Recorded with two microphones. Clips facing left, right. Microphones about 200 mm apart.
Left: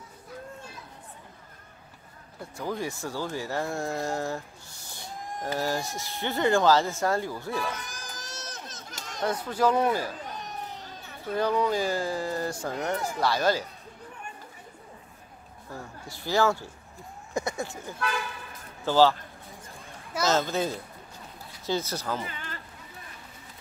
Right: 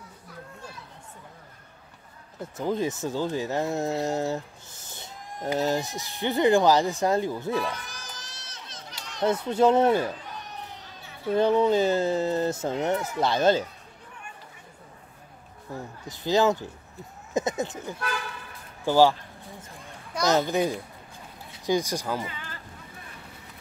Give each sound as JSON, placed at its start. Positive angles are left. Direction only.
{"t": 2.5, "sound": "speech", "side_deg": -20}
{"t": 8.2, "sound": "run", "side_deg": 45}
{"t": 9.2, "sound": "speech", "side_deg": -25}
{"t": 11.3, "sound": "speech", "side_deg": -25}
{"t": 15.7, "sound": "a child's voice", "side_deg": -20}
{"t": 20.2, "sound": "a child's voice", "side_deg": -15}